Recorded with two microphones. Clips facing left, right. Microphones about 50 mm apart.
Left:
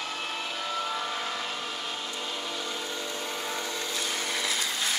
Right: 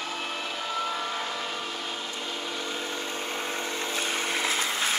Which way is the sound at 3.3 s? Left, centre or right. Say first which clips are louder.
Right 2 dB; right.